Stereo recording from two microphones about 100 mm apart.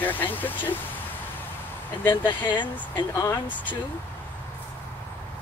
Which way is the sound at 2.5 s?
50° left (ahead or behind).